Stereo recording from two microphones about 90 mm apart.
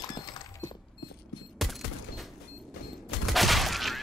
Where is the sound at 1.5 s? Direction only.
Centre (ahead or behind).